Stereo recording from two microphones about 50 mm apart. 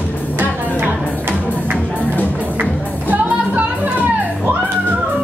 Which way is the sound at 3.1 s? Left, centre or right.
Right.